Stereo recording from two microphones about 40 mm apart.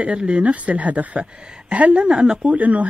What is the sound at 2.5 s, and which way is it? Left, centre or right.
Speech, right.